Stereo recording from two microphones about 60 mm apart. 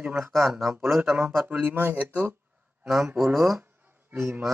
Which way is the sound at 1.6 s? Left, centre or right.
Right.